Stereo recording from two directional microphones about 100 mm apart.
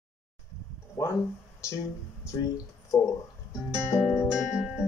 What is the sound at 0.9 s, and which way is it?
Speech, 30° left (ahead or behind).